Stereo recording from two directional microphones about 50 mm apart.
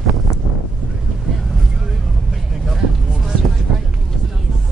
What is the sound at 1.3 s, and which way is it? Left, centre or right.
Vehicle, centre.